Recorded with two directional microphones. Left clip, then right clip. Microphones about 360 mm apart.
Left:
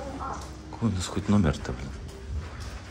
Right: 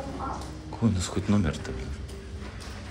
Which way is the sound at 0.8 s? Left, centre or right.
Centre.